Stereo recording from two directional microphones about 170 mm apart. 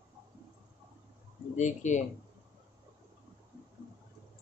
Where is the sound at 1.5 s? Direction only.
45° left (ahead or behind).